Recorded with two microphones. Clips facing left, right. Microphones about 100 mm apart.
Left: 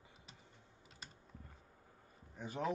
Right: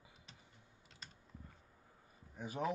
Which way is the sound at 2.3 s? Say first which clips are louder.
Right 1 dB; 5° right (ahead or behind).